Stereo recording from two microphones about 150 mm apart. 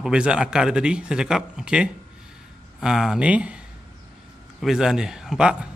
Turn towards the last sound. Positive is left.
turn(degrees=-5)  # may be behind; listen again after turning